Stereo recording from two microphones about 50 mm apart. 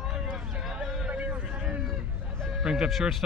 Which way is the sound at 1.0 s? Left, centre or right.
Right.